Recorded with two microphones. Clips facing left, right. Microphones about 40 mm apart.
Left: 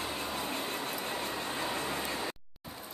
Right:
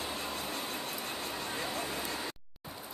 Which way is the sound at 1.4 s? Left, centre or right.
Centre.